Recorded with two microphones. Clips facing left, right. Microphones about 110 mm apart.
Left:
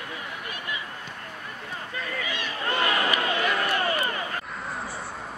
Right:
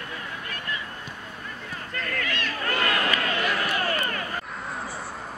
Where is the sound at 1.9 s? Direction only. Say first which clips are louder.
Right 2 dB; 10° left (ahead or behind).